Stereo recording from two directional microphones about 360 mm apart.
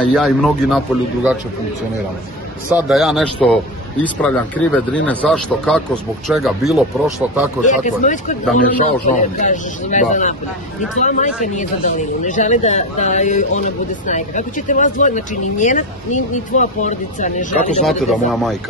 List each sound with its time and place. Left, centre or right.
0.0 s a man's voice: centre
2.7 s a man's voice: centre
7.6 s speech: left
17.8 s a man's voice: centre